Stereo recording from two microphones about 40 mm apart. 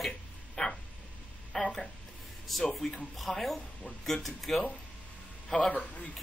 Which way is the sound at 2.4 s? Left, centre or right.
Centre.